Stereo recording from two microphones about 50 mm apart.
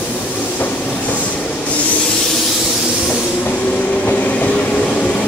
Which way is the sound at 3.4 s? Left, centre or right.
Left.